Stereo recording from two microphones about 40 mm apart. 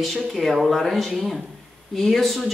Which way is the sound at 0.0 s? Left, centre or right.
Centre.